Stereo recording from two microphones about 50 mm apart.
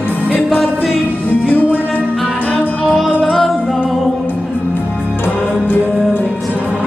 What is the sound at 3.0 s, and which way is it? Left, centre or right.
Music, centre.